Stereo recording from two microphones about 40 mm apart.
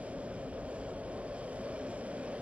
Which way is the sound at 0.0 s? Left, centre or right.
Right.